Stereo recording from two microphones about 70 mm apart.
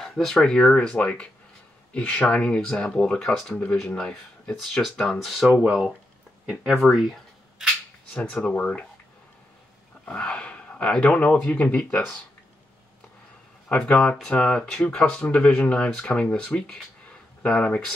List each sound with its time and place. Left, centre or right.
0.0 s speech: centre
4.7 s speech: centre
8.1 s speech: centre
10.0 s gasp: centre
11.0 s speech: left
13.7 s speech: left